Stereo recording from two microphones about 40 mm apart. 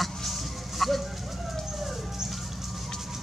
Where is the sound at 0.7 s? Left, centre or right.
Centre.